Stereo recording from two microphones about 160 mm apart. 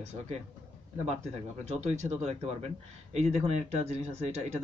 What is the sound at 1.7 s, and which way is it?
Speech, 45° right (ahead or behind).